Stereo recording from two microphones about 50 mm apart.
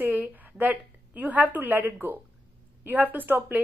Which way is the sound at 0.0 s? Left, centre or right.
Right.